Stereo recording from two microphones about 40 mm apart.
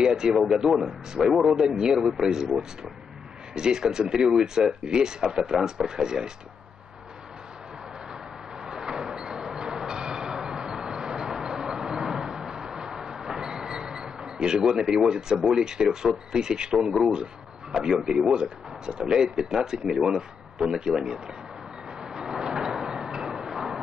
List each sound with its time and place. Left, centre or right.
0.0 s a man's voice: centre
8.6 s train: centre
15.4 s speech: centre
22.0 s a sound: centre